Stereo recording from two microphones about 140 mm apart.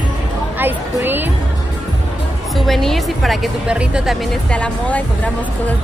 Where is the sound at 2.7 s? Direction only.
Centre (ahead or behind).